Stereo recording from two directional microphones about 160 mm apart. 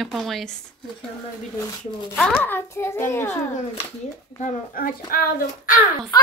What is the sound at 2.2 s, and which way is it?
A child's voice, 5° left (ahead or behind).